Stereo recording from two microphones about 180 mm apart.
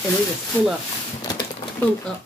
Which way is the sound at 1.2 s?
20° left (ahead or behind).